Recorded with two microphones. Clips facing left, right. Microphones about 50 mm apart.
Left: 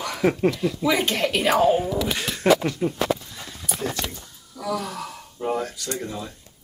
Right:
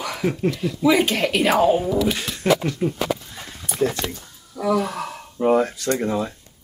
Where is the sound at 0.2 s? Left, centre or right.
Centre.